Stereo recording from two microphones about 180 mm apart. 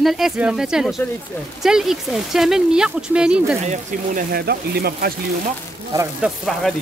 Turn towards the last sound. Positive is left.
turn(degrees=0)  # may be behind; listen again after turning